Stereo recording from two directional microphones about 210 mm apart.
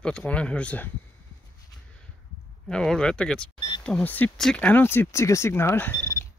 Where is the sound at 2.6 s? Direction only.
5° left (ahead or behind).